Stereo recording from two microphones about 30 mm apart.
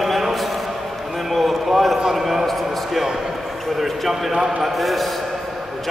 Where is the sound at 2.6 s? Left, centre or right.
Centre.